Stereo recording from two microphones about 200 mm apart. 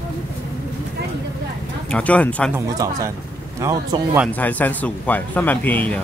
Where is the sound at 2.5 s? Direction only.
15° right (ahead or behind).